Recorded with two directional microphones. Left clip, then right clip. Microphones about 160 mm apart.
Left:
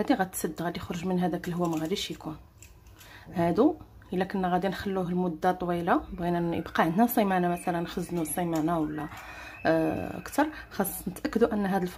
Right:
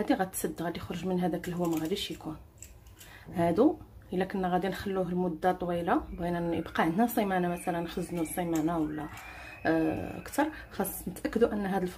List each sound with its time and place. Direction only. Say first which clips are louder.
0.0 s speech: left 2 dB; 20° left (ahead or behind)
3.3 s speech: left 1 dB; 15° left (ahead or behind)